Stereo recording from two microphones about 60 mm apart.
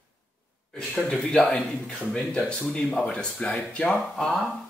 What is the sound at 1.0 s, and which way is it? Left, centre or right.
Speech, centre.